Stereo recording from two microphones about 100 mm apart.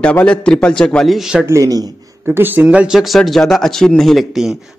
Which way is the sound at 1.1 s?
5° right (ahead or behind).